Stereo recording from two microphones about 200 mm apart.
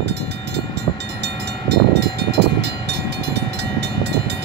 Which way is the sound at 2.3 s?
60° right (ahead or behind).